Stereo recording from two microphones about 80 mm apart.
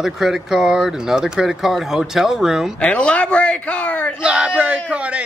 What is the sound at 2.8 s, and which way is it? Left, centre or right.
A man's voice, centre.